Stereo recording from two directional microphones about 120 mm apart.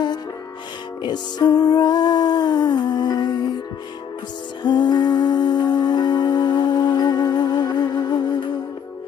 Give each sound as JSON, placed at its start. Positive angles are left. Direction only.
{"t": 1.0, "sound": "music", "side_deg": 35}
{"t": 4.6, "sound": "music", "side_deg": 35}